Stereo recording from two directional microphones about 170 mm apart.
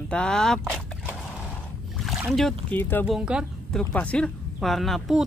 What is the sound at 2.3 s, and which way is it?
Speech, 5° left (ahead or behind).